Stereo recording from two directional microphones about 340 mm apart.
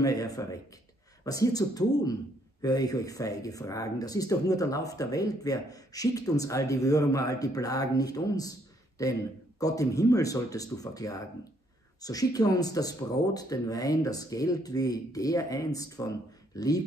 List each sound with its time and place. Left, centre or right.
0.0 s speech: centre